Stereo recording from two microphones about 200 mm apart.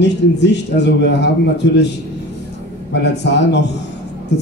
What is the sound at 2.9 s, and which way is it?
Speech, 60° left (ahead or behind).